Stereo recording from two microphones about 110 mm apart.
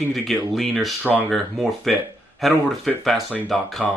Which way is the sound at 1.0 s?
15° right (ahead or behind).